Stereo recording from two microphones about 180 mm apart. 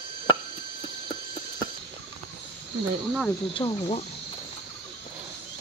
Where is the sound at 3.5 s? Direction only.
30° left (ahead or behind).